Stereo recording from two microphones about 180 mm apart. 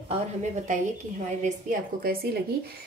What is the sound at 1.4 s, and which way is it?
Speech, 50° right (ahead or behind).